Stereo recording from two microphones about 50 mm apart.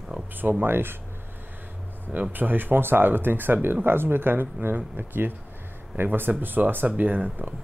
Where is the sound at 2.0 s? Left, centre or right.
Right.